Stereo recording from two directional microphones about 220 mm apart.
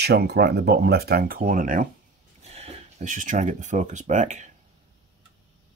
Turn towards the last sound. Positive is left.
turn(degrees=-35)  # may be behind; listen again after turning